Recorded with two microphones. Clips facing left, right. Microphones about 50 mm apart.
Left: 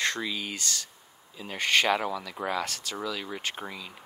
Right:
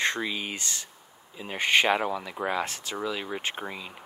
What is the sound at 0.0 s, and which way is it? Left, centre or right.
Speech, right.